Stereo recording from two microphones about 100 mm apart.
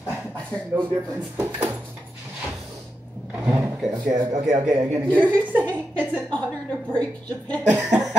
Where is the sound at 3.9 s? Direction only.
40° right (ahead or behind).